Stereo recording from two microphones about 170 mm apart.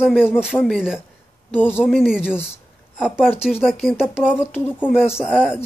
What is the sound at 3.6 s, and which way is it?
Speech, centre (ahead or behind).